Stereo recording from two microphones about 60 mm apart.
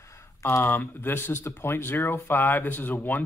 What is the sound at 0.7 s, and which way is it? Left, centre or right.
Speech, left.